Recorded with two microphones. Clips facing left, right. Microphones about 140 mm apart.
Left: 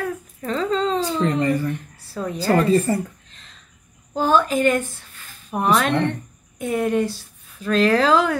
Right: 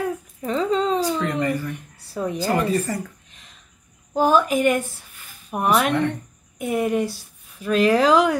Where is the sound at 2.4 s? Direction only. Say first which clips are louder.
Left 5 dB; 30° left (ahead or behind).